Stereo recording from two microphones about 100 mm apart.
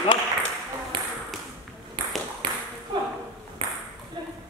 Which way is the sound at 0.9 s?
55° right (ahead or behind).